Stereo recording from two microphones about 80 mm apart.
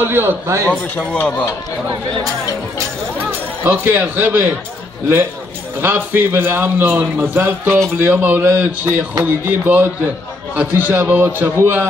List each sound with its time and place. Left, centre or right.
0.0 s a man's voice: right
0.9 s speech: centre
3.3 s speech: right
5.8 s a man's voice: right